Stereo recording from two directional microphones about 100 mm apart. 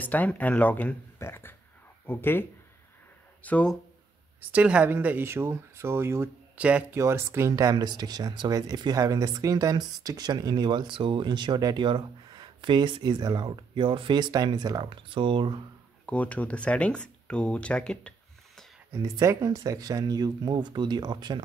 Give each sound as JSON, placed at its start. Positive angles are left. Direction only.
{"t": 0.0, "sound": "speech", "side_deg": 15}
{"t": 3.4, "sound": "speech", "side_deg": 15}
{"t": 4.4, "sound": "a woman's voice", "side_deg": -15}
{"t": 7.7, "sound": "speech", "side_deg": -45}
{"t": 16.1, "sound": "speech", "side_deg": 15}
{"t": 18.9, "sound": "speech", "side_deg": -35}